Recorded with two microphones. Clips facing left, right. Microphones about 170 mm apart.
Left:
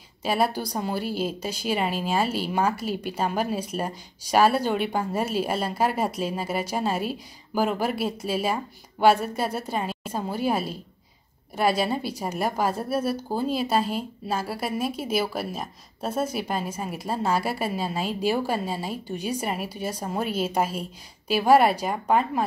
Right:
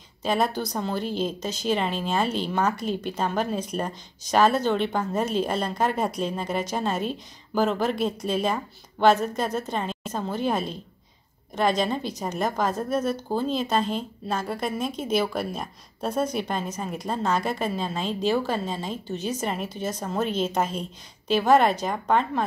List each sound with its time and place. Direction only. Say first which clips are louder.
0.2 s a woman's voice: even; 10° left (ahead or behind)